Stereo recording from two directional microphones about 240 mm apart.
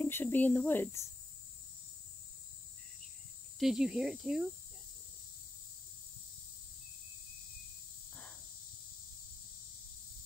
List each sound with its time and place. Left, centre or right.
0.0 s speech: centre
3.5 s speech: centre
8.1 s snake: centre